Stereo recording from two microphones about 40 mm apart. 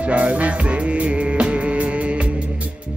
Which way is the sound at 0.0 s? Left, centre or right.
Right.